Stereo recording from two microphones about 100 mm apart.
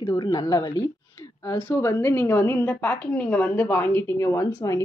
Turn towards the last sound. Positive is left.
turn(degrees=30)  # may be behind; listen again after turning